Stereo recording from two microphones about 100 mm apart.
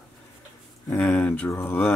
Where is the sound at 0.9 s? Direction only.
15° left (ahead or behind).